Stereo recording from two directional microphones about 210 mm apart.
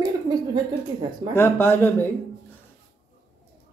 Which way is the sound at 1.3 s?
10° left (ahead or behind).